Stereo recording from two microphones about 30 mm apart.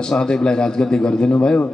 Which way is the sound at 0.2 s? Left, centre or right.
Left.